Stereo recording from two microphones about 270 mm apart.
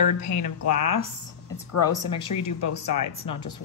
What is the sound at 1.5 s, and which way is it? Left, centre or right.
Speech, left.